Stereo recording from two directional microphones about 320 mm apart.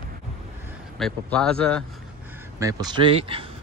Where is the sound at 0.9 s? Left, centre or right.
Centre.